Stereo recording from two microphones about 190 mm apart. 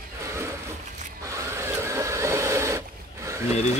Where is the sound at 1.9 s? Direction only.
15° right (ahead or behind).